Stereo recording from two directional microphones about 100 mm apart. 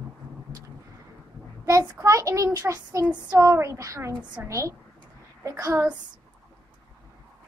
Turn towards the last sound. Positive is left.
turn(degrees=-30)  # may be behind; listen again after turning